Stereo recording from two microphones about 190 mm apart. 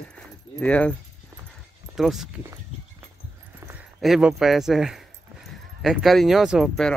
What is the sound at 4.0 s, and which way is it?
Speech, 5° right (ahead or behind).